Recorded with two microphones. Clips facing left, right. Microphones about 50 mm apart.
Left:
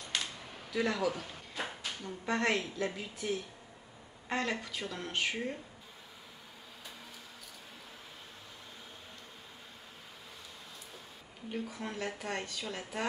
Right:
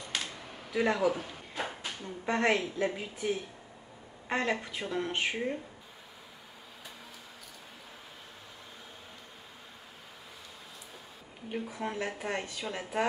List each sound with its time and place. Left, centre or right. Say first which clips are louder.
0.1 s a sound: even; centre
0.7 s speech: right 4 dB; right
2.2 s speech: right 4 dB; right
11.5 s speech: right 4 dB; centre